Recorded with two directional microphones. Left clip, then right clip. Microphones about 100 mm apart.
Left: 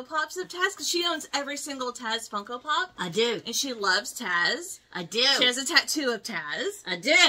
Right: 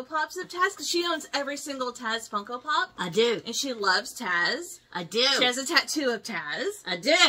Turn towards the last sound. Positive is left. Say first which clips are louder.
# left 1 dB
turn(degrees=-15)  # may be behind; listen again after turning